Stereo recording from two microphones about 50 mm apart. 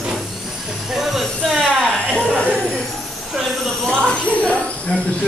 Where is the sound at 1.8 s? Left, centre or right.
Centre.